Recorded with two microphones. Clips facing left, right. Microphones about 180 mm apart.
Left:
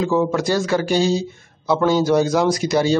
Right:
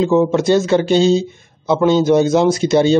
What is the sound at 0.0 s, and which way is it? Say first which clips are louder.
Speech: right 5 dB; 25° right (ahead or behind).